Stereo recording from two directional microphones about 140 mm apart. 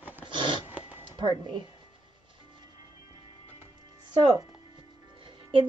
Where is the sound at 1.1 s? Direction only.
35° right (ahead or behind).